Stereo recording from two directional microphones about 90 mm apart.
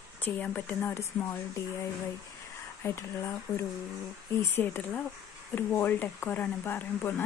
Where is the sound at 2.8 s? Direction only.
30° left (ahead or behind).